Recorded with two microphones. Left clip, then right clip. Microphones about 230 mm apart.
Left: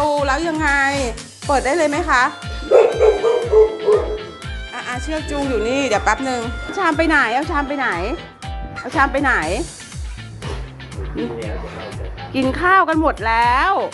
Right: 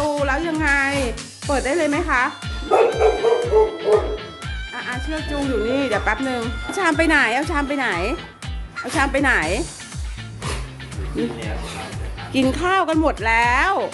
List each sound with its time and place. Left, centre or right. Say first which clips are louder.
0.2 s speech: left 2 dB; centre
1.5 s music: left 3 dB; centre
4.7 s speech: left 3 dB; centre
6.7 s speech: left 1 dB; centre
11.2 s speech: even; centre
12.3 s speech: left 4 dB; centre